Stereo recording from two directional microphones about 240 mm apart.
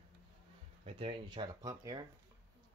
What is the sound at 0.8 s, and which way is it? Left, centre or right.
Speech, right.